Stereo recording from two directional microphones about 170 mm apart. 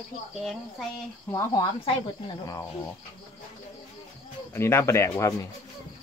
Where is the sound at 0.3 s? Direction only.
Centre (ahead or behind).